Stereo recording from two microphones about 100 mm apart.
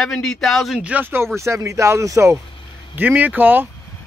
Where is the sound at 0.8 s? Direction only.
15° right (ahead or behind).